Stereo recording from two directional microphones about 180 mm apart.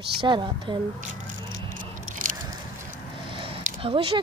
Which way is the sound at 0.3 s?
25° right (ahead or behind).